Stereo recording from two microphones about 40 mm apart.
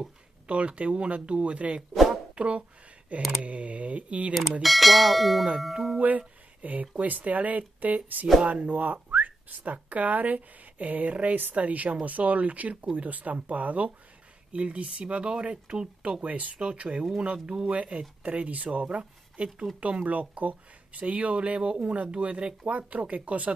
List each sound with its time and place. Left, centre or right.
0.5 s speech: right
1.8 s bell: centre
2.3 s speech: right
4.3 s bell: centre
5.9 s speech: right
16.5 s speech: right